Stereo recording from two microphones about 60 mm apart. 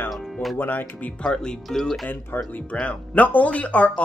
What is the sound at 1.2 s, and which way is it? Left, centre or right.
Speech, centre.